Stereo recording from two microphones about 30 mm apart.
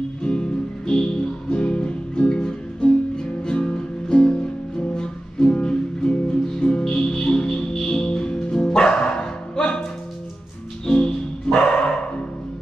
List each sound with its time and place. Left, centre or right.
0.2 s music: left
10.9 s music: left
11.5 s dog: left